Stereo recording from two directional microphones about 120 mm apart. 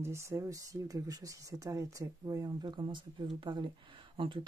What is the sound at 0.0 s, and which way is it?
Speech, 20° right (ahead or behind).